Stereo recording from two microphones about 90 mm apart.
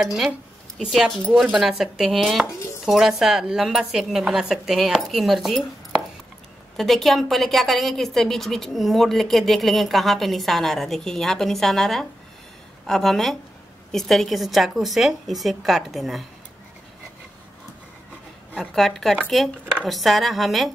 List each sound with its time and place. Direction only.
0.0 s a woman's voice: 5° right (ahead or behind)
6.8 s a woman's voice: centre (ahead or behind)
18.8 s a woman's voice: centre (ahead or behind)